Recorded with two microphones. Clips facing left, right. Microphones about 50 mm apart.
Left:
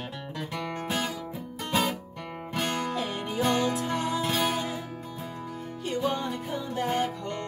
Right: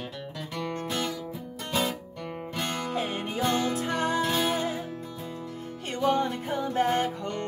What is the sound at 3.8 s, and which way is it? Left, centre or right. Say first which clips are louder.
Music: right 2 dB; right.